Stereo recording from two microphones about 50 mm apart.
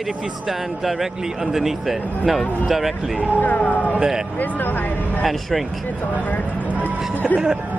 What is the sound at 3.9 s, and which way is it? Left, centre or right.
Speech, centre.